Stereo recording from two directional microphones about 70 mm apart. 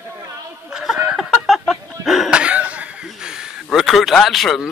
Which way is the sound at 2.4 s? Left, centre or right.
Centre.